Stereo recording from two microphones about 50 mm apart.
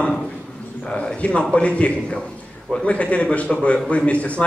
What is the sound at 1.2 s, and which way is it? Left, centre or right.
A man's voice, left.